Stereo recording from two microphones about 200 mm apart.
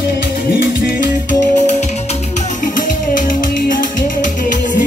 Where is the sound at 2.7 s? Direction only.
40° left (ahead or behind).